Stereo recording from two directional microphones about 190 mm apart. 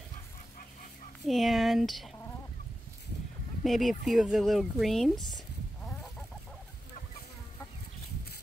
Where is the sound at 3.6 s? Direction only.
Centre (ahead or behind).